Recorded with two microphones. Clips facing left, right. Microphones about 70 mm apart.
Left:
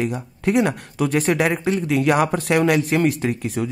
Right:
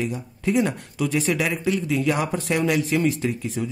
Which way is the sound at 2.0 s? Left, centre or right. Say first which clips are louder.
Left 5 dB; left.